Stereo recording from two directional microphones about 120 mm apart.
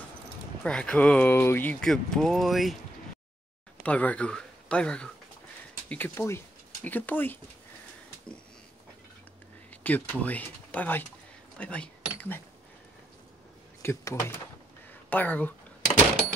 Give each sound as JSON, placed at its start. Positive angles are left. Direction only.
{"t": 0.7, "sound": "speech", "side_deg": 10}
{"t": 1.9, "sound": "speech", "side_deg": 5}
{"t": 3.8, "sound": "speech", "side_deg": 10}
{"t": 9.7, "sound": "speech", "side_deg": 15}
{"t": 11.5, "sound": "a sound", "side_deg": 10}
{"t": 13.8, "sound": "speech", "side_deg": 20}